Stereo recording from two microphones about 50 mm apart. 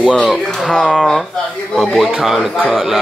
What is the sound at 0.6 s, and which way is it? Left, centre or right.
A man's voice, centre.